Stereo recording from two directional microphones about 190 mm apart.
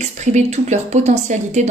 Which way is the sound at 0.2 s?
35° right (ahead or behind).